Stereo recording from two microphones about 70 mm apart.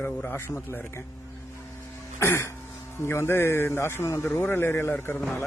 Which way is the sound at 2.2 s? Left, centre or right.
Left.